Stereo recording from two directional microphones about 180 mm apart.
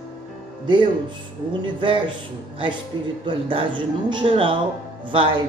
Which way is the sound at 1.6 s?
25° right (ahead or behind).